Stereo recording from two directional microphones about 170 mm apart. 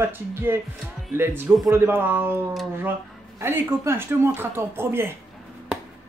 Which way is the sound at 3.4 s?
15° right (ahead or behind).